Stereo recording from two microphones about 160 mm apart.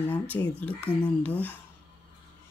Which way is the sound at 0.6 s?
10° left (ahead or behind).